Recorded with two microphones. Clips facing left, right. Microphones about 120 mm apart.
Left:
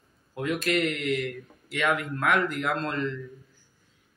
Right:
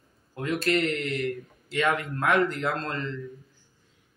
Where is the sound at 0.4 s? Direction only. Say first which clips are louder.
Right 1 dB; 35° right (ahead or behind).